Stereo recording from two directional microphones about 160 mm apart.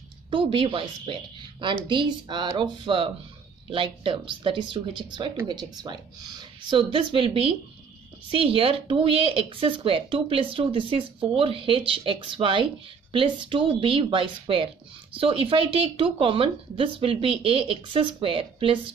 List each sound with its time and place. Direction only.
0.3 s speech: 30° right (ahead or behind)